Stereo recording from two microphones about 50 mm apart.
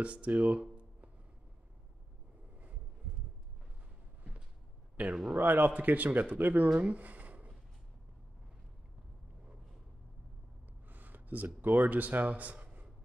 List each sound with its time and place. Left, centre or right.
0.0 s speech: right
4.9 s speech: right
6.8 s a sound: right
10.9 s speech: right